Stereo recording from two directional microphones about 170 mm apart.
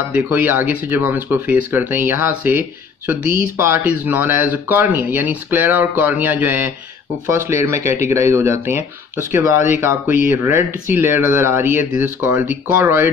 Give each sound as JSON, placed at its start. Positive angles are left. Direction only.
{"t": 0.1, "sound": "speech", "side_deg": -10}